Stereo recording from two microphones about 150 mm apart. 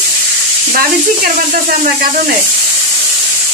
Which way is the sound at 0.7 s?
75° right (ahead or behind).